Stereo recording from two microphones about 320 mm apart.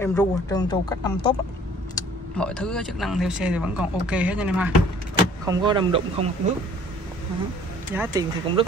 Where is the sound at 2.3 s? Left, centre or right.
Centre.